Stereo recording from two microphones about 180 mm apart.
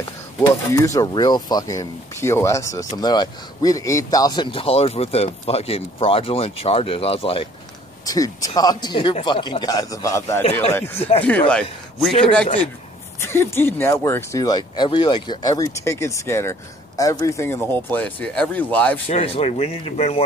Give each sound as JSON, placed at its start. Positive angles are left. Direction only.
{"t": 0.7, "sound": "speech", "side_deg": 20}
{"t": 8.0, "sound": "a man's voice", "side_deg": 20}
{"t": 13.2, "sound": "speech", "side_deg": 15}
{"t": 19.0, "sound": "speech", "side_deg": 30}